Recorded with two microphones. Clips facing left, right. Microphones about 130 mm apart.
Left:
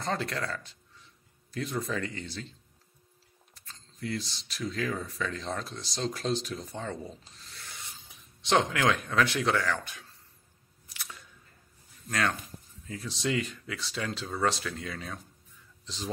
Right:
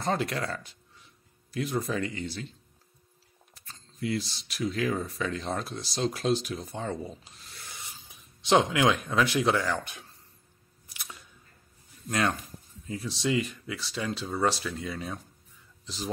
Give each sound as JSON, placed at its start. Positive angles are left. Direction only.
{"t": 0.0, "sound": "speech", "side_deg": -15}
{"t": 3.5, "sound": "speech", "side_deg": -10}
{"t": 4.9, "sound": "speech", "side_deg": -25}
{"t": 5.2, "sound": "speech", "side_deg": -10}
{"t": 12.1, "sound": "speech", "side_deg": -15}
{"t": 13.1, "sound": "speech", "side_deg": -5}